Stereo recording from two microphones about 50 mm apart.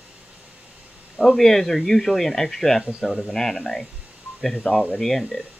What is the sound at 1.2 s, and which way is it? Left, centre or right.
Speech, centre.